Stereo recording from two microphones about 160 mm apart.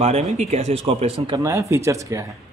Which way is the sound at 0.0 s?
45° right (ahead or behind).